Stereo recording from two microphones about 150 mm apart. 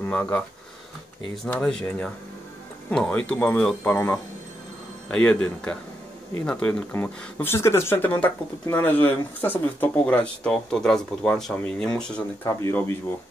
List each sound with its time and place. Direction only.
0.0 s speech: 10° left (ahead or behind)
12.4 s speech: 15° left (ahead or behind)